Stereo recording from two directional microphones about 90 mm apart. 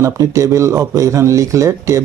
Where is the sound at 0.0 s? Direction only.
35° right (ahead or behind).